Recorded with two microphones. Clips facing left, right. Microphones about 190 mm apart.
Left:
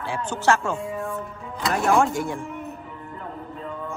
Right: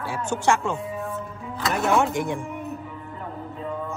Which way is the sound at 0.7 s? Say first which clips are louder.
Left 1 dB; centre (ahead or behind).